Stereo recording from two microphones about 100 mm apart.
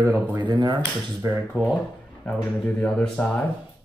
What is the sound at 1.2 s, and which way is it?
Speech, 20° right (ahead or behind).